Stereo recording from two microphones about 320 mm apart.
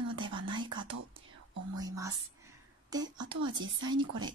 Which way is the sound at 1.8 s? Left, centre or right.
Centre.